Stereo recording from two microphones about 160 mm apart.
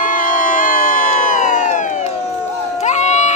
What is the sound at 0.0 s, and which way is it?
Crowd, 55° left (ahead or behind).